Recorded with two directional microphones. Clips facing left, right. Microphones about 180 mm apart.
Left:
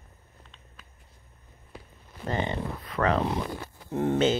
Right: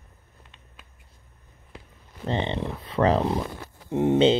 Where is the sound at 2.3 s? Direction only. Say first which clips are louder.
Right 2 dB; 25° right (ahead or behind).